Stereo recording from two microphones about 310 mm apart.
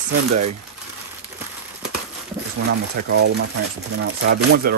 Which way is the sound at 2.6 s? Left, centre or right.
Right.